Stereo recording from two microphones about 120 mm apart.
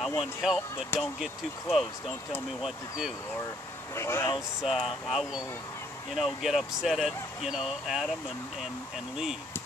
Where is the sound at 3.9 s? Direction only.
20° left (ahead or behind).